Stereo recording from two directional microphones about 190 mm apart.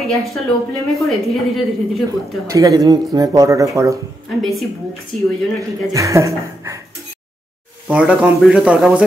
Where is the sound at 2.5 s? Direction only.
15° right (ahead or behind).